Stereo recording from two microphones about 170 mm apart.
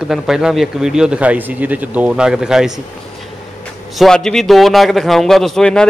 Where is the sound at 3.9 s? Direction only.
Centre (ahead or behind).